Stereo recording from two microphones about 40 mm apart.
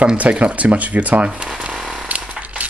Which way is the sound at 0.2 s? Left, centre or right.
Right.